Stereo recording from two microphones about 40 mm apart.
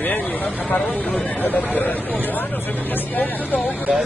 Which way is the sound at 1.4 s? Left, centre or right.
Left.